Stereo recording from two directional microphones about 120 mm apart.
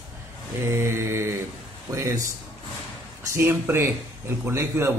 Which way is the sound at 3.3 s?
20° right (ahead or behind).